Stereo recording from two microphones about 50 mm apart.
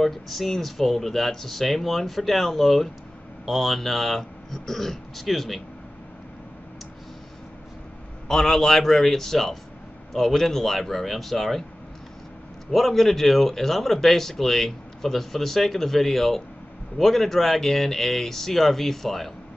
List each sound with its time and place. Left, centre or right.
0.0 s speech: centre
8.3 s a man's voice: centre
12.7 s speech: centre